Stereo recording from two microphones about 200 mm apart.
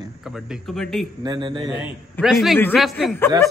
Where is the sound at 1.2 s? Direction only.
20° right (ahead or behind).